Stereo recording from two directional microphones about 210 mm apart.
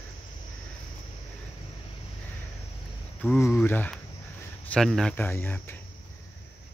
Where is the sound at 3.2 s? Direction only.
10° left (ahead or behind).